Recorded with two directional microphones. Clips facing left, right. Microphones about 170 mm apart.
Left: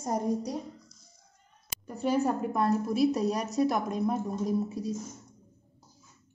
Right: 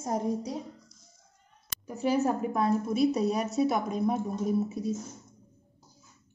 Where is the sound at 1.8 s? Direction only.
Centre (ahead or behind).